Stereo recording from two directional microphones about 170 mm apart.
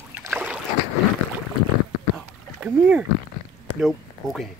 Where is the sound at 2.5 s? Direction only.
10° right (ahead or behind).